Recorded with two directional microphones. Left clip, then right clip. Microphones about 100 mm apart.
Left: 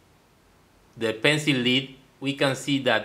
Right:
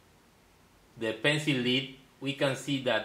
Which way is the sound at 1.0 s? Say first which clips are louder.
Left 6 dB; 60° left (ahead or behind).